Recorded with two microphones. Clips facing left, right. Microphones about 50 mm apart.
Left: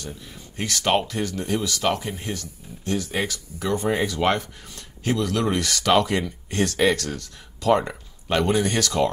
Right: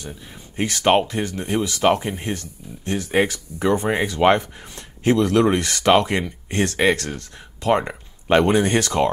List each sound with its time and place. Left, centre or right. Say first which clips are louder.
0.6 s speech: right 5 dB; right